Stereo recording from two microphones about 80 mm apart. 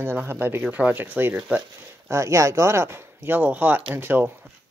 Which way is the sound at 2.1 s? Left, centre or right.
Right.